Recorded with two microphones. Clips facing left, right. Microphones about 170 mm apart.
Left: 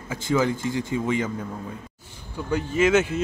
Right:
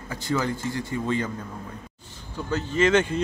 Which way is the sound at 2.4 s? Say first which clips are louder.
Left 1 dB; 10° left (ahead or behind).